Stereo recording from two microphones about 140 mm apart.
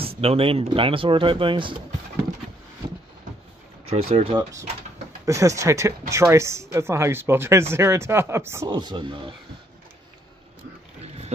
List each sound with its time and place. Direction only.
0.2 s speech: 45° right (ahead or behind)
3.8 s speech: 45° right (ahead or behind)
5.2 s speech: 20° right (ahead or behind)
8.6 s speech: 30° right (ahead or behind)
11.0 s a sound: 50° right (ahead or behind)